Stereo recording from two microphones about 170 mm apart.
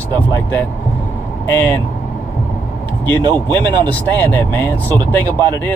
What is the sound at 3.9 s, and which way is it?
Speech, 10° left (ahead or behind).